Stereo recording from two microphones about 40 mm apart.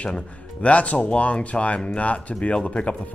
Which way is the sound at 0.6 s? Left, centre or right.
Left.